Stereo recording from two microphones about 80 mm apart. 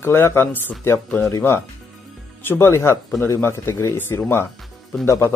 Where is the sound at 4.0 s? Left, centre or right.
Left.